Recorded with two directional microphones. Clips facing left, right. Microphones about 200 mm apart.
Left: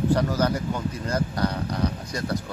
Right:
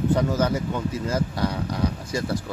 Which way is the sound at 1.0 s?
5° right (ahead or behind).